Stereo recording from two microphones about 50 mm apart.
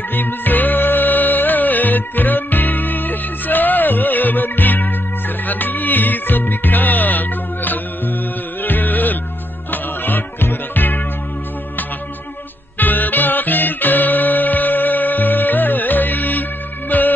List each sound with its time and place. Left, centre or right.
0.1 s music: left
12.7 s music: left